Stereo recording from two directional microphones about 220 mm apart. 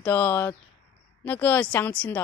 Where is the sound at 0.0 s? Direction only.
10° left (ahead or behind).